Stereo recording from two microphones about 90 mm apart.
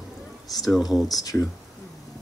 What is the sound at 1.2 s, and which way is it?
Speech, 40° left (ahead or behind).